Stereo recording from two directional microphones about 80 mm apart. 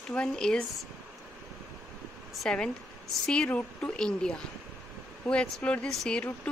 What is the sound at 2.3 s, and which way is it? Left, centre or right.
Speech, centre.